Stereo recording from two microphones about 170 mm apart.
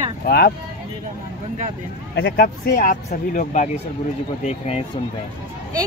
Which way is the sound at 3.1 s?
45° left (ahead or behind).